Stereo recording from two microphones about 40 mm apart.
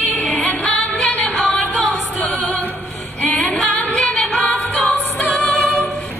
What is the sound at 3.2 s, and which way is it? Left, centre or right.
Female singing, left.